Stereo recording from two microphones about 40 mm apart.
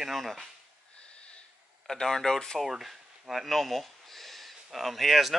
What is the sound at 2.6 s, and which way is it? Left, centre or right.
Speech, centre.